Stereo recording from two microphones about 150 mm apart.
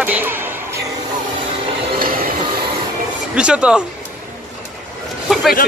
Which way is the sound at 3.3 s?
5° right (ahead or behind).